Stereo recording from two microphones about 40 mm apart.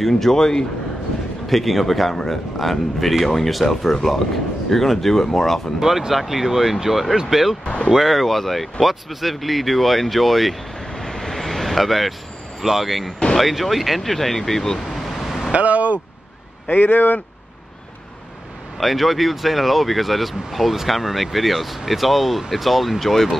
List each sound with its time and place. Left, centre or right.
0.0 s speech: centre
1.5 s speech: centre
5.8 s speech: centre
7.6 s speech: left
7.9 s speech: centre
10.9 s vehicle: centre
12.6 s speech: centre
14.9 s vehicle: centre
15.5 s speech: right
16.6 s speech: left
18.8 s speech: centre